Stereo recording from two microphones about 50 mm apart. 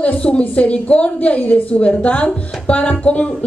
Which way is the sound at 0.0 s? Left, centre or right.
Left.